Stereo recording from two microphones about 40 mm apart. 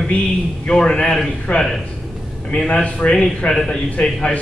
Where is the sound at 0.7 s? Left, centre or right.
Centre.